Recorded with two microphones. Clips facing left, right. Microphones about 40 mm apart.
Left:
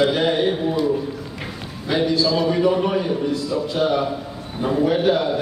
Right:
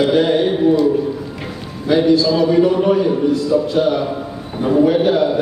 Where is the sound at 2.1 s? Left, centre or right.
Centre.